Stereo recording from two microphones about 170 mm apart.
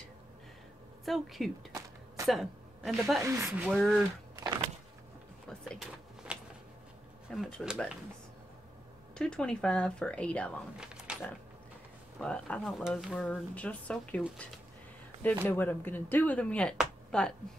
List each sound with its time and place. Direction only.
1.0 s speech: centre (ahead or behind)
1.7 s a sound: 20° right (ahead or behind)
2.2 s a woman's voice: centre (ahead or behind)
3.3 s speech: 15° right (ahead or behind)
3.7 s speech: centre (ahead or behind)
5.5 s speech: 5° left (ahead or behind)
6.3 s a sound: 5° right (ahead or behind)
7.2 s speech: centre (ahead or behind)
9.1 s speech: 5° left (ahead or behind)
12.2 s speech: 5° left (ahead or behind)
15.4 s speech: 10° left (ahead or behind)
16.7 s a sound: 5° left (ahead or behind)